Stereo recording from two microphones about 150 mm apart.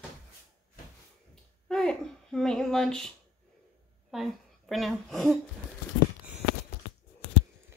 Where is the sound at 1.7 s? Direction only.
5° left (ahead or behind).